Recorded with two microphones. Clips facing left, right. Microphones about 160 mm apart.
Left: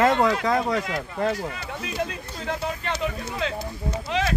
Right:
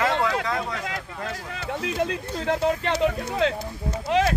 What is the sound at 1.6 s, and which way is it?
Speech, 70° right (ahead or behind).